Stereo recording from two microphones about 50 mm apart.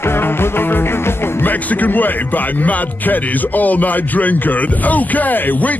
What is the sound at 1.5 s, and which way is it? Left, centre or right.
Speech, left.